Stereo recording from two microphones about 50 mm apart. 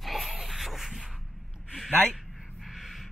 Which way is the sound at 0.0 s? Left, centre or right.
Centre.